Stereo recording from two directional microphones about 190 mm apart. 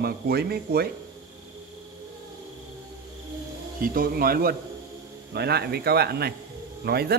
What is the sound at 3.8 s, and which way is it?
Speech, 50° right (ahead or behind).